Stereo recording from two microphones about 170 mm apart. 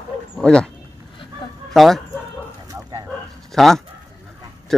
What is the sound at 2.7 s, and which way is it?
Dog, 20° right (ahead or behind).